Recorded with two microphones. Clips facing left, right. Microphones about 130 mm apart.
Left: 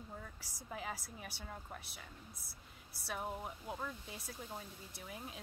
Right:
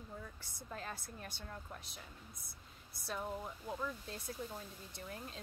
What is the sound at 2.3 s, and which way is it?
Speech, 30° left (ahead or behind).